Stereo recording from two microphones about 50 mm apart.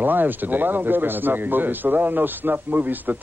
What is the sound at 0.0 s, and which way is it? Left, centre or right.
A man's voice, right.